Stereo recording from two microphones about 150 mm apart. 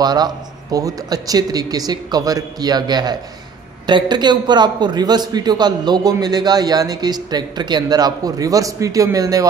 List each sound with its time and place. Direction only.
0.0 s a man's voice: 25° right (ahead or behind)